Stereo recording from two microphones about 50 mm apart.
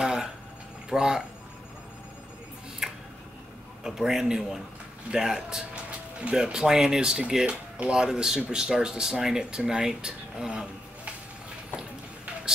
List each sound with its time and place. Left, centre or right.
0.0 s a sound: centre
0.8 s speech: centre
2.8 s tick-tock: centre
3.8 s speech: centre